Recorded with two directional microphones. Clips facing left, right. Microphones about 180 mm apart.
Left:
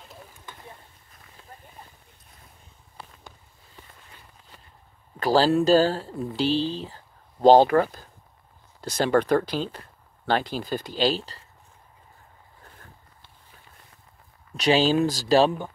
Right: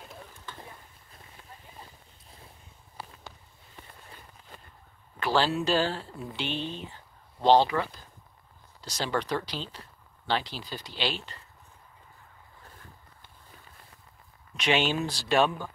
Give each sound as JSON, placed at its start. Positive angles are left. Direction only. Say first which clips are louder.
{"t": 0.5, "sound": "boat", "louder": "right 2 dB", "side_deg": 15}
{"t": 5.2, "sound": "speech", "louder": "left 7 dB", "side_deg": 40}
{"t": 7.4, "sound": "speech", "louder": "left 6 dB", "side_deg": 45}
{"t": 14.6, "sound": "speech", "louder": "left 7 dB", "side_deg": 35}